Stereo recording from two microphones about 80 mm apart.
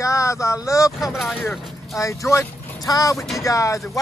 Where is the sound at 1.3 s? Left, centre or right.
Left.